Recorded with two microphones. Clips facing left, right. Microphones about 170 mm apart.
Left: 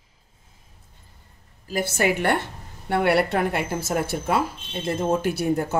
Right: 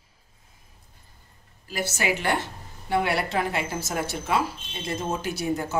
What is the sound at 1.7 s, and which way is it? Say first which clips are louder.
A woman's voice: left 4 dB; 50° left (ahead or behind).